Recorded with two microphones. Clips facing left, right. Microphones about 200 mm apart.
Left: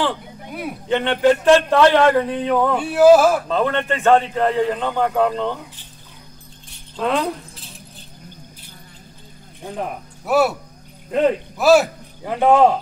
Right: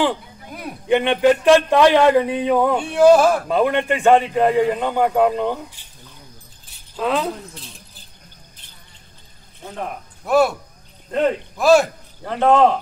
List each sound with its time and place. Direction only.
0.8 s a man's voice: 15° right (ahead or behind)
2.7 s a sound: 5° left (ahead or behind)
3.4 s a man's voice: 15° right (ahead or behind)
7.0 s keys jangling: centre (ahead or behind)
9.6 s speech: 15° left (ahead or behind)
10.2 s a sound: 5° left (ahead or behind)
11.1 s speech: 5° left (ahead or behind)